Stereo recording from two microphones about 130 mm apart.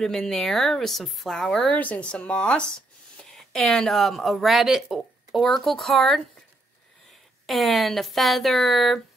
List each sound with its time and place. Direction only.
0.0 s a woman's voice: 5° left (ahead or behind)
7.4 s a woman's voice: centre (ahead or behind)